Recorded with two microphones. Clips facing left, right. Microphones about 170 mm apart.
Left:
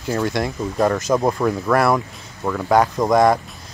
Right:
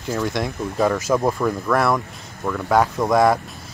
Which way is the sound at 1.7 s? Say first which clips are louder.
Left 3 dB; centre (ahead or behind).